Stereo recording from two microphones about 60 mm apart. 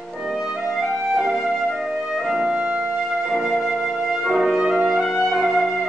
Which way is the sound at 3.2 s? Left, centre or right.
Centre.